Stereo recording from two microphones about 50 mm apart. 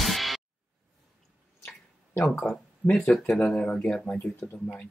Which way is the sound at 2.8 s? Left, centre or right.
Centre.